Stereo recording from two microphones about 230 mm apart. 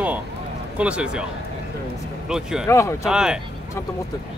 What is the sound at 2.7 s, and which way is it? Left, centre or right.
Speech, centre.